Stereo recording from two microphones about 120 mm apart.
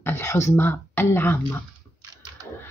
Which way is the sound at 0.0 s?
25° left (ahead or behind).